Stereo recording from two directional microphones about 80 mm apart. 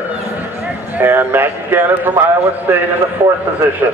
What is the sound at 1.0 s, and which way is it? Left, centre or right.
A man's voice, right.